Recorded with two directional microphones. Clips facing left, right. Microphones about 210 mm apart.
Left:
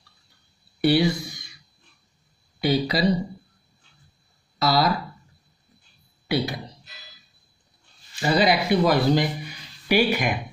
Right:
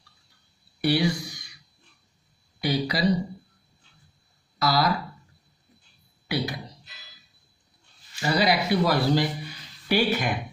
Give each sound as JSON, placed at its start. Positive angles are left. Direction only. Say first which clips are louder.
{"t": 0.7, "sound": "a sound", "louder": "left 4 dB", "side_deg": 25}
{"t": 2.6, "sound": "speech", "louder": "left 3 dB", "side_deg": 25}
{"t": 4.6, "sound": "speech", "louder": "left 2 dB", "side_deg": 25}
{"t": 6.2, "sound": "speech", "louder": "left 4 dB", "side_deg": 25}
{"t": 8.2, "sound": "speech", "louder": "left 3 dB", "side_deg": 20}